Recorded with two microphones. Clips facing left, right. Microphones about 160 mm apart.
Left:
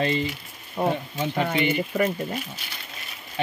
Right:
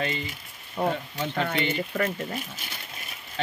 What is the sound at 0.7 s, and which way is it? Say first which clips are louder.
Speech: left 2 dB; 20° left (ahead or behind).